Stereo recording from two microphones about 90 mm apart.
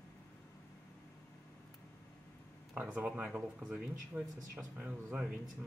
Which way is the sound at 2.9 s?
15° right (ahead or behind).